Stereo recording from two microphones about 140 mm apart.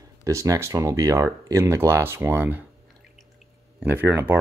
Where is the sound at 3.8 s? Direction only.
15° right (ahead or behind).